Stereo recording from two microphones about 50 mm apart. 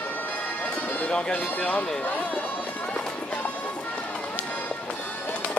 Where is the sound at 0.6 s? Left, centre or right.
Left.